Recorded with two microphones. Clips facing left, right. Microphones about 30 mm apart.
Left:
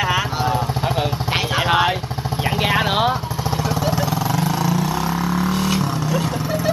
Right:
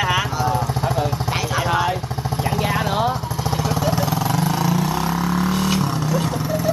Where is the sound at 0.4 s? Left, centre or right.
Left.